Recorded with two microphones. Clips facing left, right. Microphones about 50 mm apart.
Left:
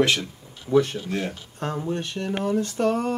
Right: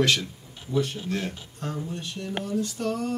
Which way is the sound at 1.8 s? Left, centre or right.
Left.